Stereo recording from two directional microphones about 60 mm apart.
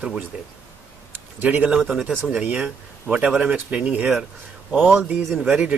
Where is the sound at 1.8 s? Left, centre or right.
Centre.